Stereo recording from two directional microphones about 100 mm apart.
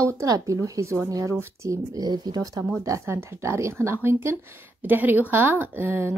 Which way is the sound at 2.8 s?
30° right (ahead or behind).